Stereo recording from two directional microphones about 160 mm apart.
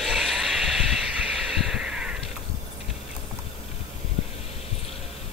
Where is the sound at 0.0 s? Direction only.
Centre (ahead or behind).